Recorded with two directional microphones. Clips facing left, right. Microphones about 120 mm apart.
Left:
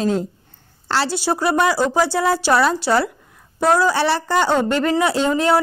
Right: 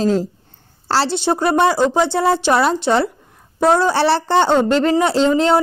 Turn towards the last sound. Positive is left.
turn(degrees=-25)  # may be behind; listen again after turning